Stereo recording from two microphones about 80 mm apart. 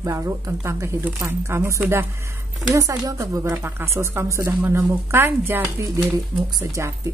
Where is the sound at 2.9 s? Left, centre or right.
Right.